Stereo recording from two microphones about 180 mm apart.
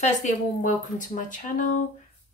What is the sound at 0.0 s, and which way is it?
A woman's voice, 45° left (ahead or behind).